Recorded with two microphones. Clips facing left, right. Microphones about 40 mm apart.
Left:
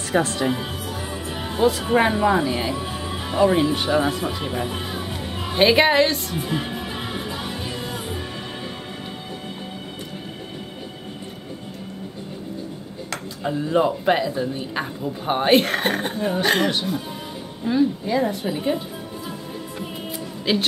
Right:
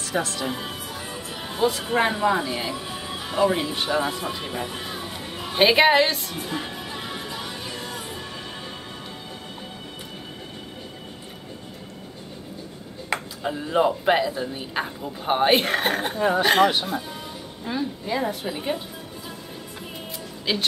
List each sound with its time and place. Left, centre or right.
0.0 s music: left
0.4 s speech: left
0.8 s music: centre
1.6 s speech: centre
3.0 s music: centre
3.3 s speech: centre
4.8 s music: centre
5.7 s speech: centre
6.3 s speech: centre
6.8 s music: left
13.4 s speech: centre
16.2 s speech: centre
20.5 s speech: centre